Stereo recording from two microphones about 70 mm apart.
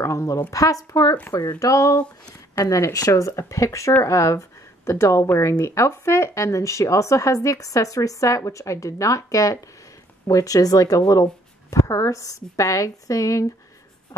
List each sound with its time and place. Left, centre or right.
0.0 s speech: left
1.3 s speech: left